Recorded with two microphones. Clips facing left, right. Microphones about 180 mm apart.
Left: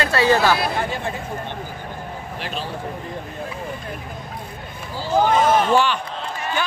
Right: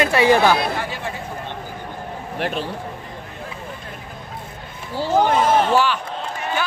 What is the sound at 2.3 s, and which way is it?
Speech, 60° right (ahead or behind).